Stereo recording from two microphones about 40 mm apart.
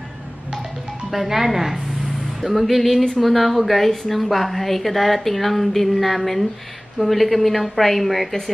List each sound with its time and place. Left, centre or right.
1.1 s a woman's voice: centre